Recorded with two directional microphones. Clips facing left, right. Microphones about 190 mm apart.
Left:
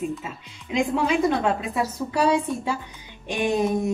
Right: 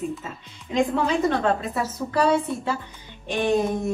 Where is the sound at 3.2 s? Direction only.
15° left (ahead or behind).